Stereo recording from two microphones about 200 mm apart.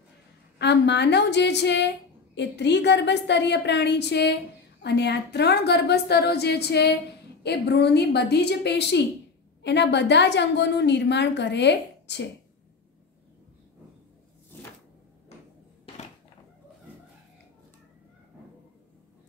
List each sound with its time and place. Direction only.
0.6 s a woman's voice: 60° left (ahead or behind)